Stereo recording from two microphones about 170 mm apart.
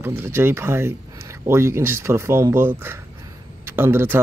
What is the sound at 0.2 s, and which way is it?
Speech, 15° right (ahead or behind).